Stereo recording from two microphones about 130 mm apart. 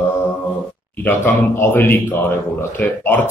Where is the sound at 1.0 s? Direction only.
20° left (ahead or behind).